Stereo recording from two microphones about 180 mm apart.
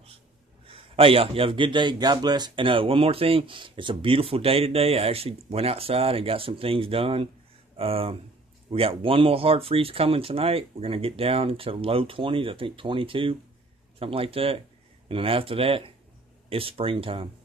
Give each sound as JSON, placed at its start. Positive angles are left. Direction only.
{"t": 0.7, "sound": "a man's voice", "side_deg": -30}